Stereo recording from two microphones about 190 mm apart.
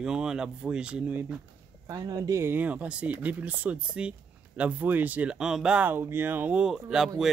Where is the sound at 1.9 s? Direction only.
20° right (ahead or behind).